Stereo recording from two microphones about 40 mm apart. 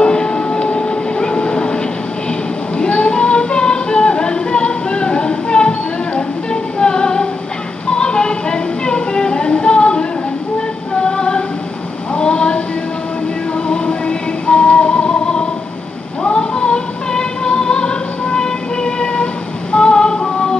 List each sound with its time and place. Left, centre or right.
0.0 s train: left
2.8 s music: left
11.0 s singing: left
12.1 s a sound: left
13.7 s music: left
19.7 s a sound: left